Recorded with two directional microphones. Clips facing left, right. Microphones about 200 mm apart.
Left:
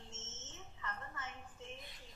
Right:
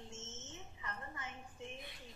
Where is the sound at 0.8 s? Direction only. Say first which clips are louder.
Left 1 dB; 15° right (ahead or behind).